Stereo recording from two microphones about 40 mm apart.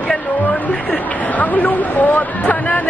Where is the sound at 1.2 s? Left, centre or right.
Left.